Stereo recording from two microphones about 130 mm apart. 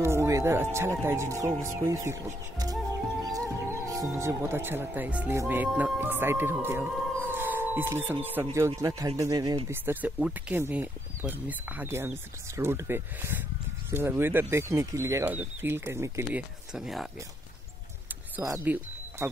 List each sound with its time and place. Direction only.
0.0 s music: 20° right (ahead or behind)
4.1 s speech: 20° right (ahead or behind)
9.7 s speech: 20° right (ahead or behind)
16.7 s speech: 5° right (ahead or behind)
18.6 s speech: 15° right (ahead or behind)